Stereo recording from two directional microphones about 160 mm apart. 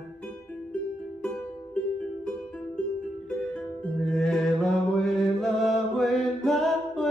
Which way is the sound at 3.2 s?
5° left (ahead or behind).